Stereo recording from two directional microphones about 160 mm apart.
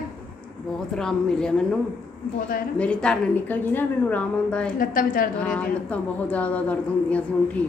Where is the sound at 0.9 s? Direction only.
5° left (ahead or behind).